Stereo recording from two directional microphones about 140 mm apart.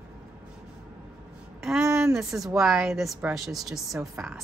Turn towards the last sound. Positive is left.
turn(degrees=0)  # may be behind; listen again after turning